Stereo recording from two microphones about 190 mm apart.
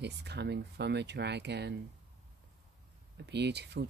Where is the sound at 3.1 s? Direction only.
65° right (ahead or behind).